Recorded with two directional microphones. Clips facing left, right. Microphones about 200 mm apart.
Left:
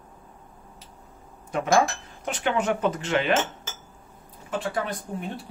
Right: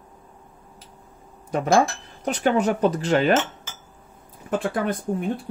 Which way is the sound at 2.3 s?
40° right (ahead or behind).